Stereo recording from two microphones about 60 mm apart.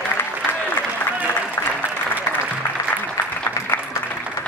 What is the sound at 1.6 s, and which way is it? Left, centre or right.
Applause, left.